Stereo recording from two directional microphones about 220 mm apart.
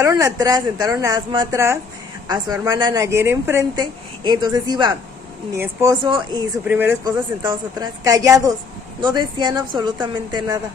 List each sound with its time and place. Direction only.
0.0 s a woman's voice: 15° right (ahead or behind)